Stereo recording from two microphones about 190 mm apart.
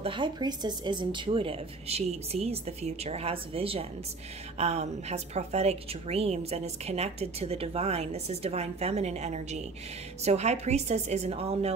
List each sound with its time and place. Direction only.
0.0 s a woman's voice: 25° right (ahead or behind)